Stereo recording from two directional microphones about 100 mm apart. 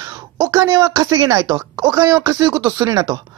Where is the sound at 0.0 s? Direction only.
35° right (ahead or behind).